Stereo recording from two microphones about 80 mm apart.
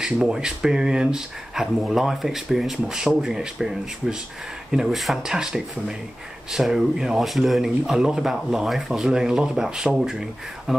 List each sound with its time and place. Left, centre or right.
0.0 s speech: centre